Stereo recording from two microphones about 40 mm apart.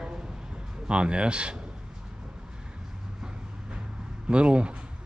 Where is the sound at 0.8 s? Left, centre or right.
Right.